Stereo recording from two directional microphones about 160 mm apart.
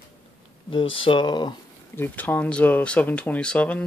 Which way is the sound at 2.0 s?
10° left (ahead or behind).